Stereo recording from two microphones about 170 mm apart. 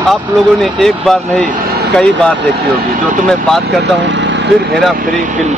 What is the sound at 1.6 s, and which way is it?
Vehicle, 65° right (ahead or behind).